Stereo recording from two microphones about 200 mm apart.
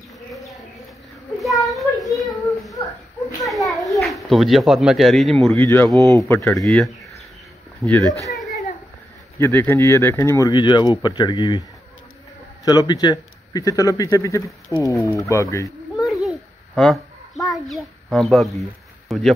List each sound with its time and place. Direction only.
1.4 s child singing: centre (ahead or behind)
3.4 s a child's voice: centre (ahead or behind)
8.3 s a sound: centre (ahead or behind)
9.4 s speech: 10° left (ahead or behind)
12.6 s speech: 20° left (ahead or behind)
16.0 s a sound: centre (ahead or behind)